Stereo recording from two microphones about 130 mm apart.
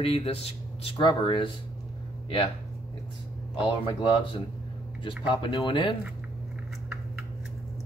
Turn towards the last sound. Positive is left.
turn(degrees=40)  # may be behind; listen again after turning